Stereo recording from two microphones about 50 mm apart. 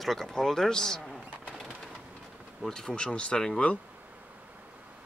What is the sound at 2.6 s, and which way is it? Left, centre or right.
Speech, centre.